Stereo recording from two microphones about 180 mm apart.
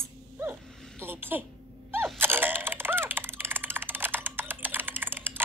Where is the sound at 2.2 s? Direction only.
10° right (ahead or behind).